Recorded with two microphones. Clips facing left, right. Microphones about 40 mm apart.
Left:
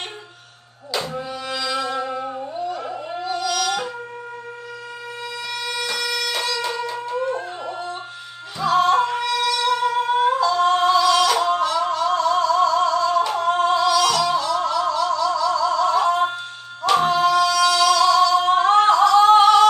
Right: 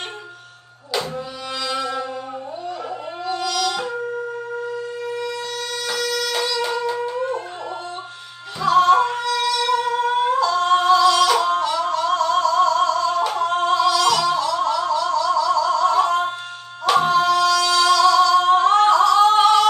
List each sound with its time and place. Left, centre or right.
1.6 s music: centre
3.3 s music: centre
6.0 s music: centre
8.6 s yodeling: centre
9.4 s singing: centre
16.8 s music: centre
17.9 s singing: centre